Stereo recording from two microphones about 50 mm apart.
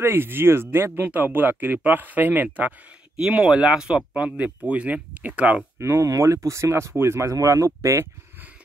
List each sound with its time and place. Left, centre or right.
0.0 s speech: right
3.2 s speech: centre
5.9 s speech: right